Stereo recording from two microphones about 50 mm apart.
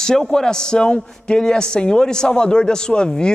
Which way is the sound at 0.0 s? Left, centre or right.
Centre.